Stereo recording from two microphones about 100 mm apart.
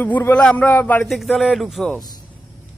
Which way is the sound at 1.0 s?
Centre (ahead or behind).